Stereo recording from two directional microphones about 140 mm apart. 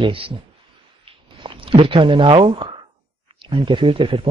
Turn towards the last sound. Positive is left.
turn(degrees=-40)  # may be behind; listen again after turning